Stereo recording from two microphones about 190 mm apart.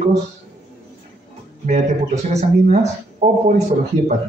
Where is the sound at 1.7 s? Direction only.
35° right (ahead or behind).